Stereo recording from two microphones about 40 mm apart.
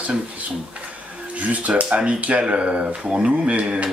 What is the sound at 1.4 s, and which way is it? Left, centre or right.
Speech, right.